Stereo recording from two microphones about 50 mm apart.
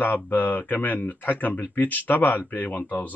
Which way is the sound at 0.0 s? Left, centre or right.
Left.